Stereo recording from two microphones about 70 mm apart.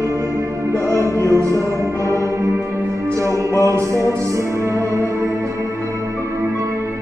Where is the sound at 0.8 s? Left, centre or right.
Right.